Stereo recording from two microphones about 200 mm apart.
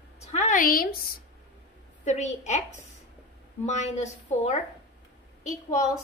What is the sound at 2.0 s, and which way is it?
Speech, 35° left (ahead or behind).